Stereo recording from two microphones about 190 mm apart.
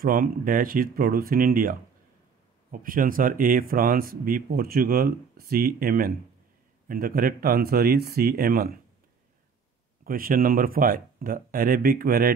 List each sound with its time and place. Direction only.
0.0 s speech: 50° right (ahead or behind)
10.0 s speech: 50° right (ahead or behind)